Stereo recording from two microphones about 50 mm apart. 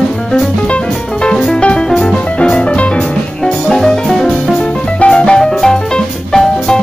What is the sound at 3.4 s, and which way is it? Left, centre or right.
Music, centre.